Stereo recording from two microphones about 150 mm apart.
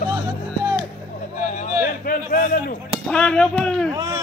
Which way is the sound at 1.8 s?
70° left (ahead or behind).